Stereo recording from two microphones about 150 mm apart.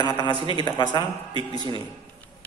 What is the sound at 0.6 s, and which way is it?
Speech, 30° left (ahead or behind).